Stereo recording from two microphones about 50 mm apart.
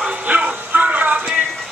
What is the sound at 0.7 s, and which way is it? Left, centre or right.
Music, right.